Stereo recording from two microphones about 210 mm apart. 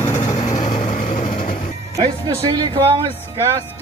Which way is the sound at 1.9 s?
20° right (ahead or behind).